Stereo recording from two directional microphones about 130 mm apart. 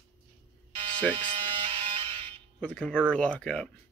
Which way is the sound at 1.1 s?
40° right (ahead or behind).